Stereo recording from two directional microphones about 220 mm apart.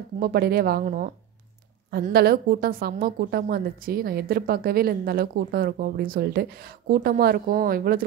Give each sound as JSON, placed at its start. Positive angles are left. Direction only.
{"t": 0.2, "sound": "a woman's voice", "side_deg": -45}